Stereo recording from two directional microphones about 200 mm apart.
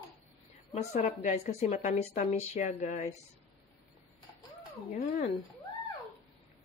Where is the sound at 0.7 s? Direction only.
35° left (ahead or behind).